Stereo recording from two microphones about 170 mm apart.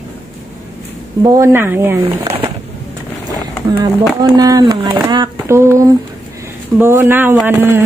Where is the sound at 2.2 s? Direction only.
35° right (ahead or behind).